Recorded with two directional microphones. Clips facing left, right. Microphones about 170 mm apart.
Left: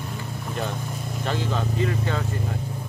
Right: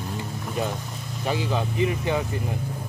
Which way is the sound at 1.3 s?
10° right (ahead or behind).